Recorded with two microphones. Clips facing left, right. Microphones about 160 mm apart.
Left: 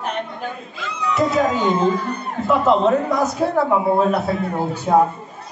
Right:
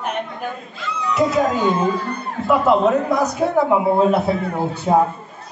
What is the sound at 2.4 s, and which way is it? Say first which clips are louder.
Speech: right 1 dB; 5° right (ahead or behind).